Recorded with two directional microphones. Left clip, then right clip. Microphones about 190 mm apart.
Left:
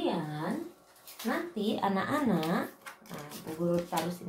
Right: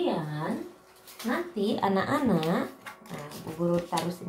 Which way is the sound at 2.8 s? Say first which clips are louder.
Right 4 dB; 10° left (ahead or behind).